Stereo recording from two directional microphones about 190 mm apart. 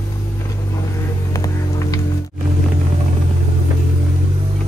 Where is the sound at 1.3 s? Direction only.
20° left (ahead or behind).